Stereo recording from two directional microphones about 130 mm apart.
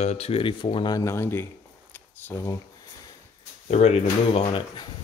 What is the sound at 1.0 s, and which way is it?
Speech, 20° left (ahead or behind).